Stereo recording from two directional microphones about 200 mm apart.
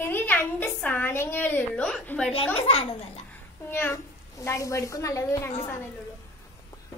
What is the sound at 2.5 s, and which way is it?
Speech, 30° left (ahead or behind).